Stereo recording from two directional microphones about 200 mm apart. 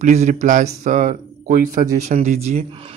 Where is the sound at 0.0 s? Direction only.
35° right (ahead or behind).